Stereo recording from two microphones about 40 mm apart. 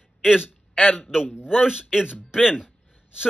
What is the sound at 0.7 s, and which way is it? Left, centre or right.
Speech, left.